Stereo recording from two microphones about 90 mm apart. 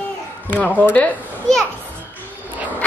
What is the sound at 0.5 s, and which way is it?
Speech, 20° left (ahead or behind).